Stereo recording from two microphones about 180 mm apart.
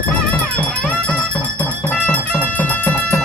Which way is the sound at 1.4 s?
15° right (ahead or behind).